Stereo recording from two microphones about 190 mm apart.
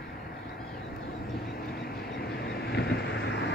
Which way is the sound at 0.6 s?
55° left (ahead or behind).